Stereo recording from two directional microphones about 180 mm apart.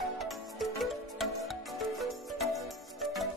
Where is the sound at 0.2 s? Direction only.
Centre (ahead or behind).